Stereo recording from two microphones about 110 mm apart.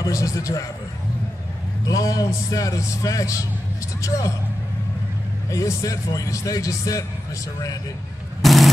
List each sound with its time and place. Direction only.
0.0 s a man's voice: 30° left (ahead or behind)
1.9 s a man's voice: 30° left (ahead or behind)
5.5 s a man's voice: 30° left (ahead or behind)
8.4 s vehicle: centre (ahead or behind)